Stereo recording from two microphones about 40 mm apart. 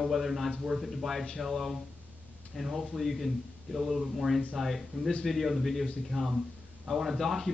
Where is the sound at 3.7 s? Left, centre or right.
Centre.